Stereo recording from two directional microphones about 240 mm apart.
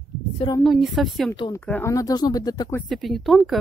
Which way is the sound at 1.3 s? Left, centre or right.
Centre.